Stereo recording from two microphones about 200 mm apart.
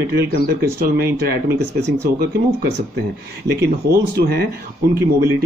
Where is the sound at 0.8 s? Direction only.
50° right (ahead or behind).